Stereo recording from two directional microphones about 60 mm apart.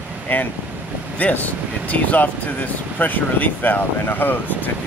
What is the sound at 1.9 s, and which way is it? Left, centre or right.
Speech, left.